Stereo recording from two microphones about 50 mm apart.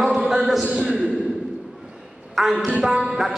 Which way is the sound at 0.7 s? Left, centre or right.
Right.